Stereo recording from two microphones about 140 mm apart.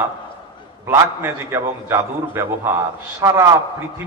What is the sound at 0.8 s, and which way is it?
A man's voice, 20° right (ahead or behind).